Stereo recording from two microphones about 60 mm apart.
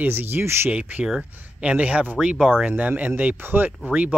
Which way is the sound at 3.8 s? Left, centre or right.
Right.